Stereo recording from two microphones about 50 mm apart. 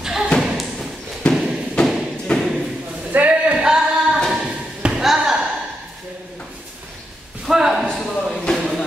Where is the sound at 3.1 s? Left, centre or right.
Right.